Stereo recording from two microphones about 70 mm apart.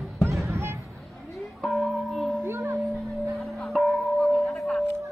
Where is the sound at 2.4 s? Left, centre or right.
Right.